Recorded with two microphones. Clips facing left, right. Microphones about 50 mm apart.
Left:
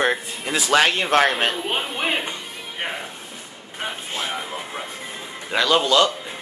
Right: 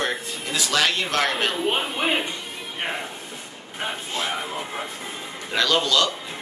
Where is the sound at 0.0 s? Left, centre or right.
Left.